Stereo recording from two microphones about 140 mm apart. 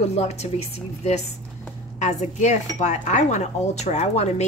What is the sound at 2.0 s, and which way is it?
Cutlery, 55° left (ahead or behind).